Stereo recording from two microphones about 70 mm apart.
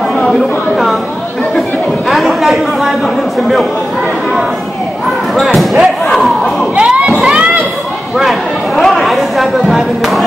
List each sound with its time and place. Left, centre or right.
0.3 s speech: centre
2.0 s chatter: centre
5.3 s speech: centre
6.1 s crowd: centre
6.7 s a sound: centre
8.2 s a sound: centre